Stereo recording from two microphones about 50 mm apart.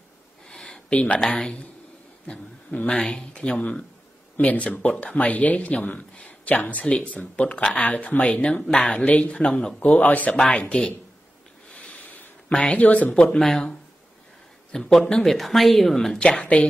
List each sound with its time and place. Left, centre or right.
0.5 s a sound: centre
0.9 s speech: left
9.8 s speech: left
10.3 s speech: left
11.7 s a sound: left
12.7 s speech: left
13.1 s speech: centre
13.4 s a woman's voice: centre
16.2 s speech: left